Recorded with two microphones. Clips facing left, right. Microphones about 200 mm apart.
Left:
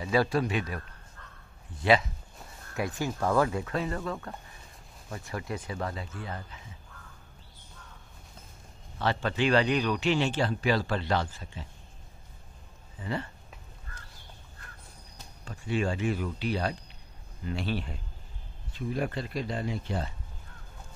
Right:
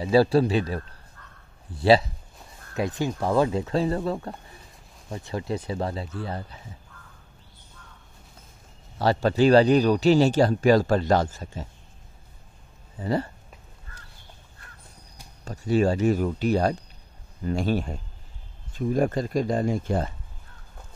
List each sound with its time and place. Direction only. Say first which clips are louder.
0.0 s speech: right 7 dB; 30° right (ahead or behind)
2.7 s speech: right 5 dB; 20° right (ahead or behind)
8.9 s speech: right 7 dB; 40° right (ahead or behind)
13.0 s speech: right 8 dB; 40° right (ahead or behind)
15.4 s speech: right 8 dB; 40° right (ahead or behind)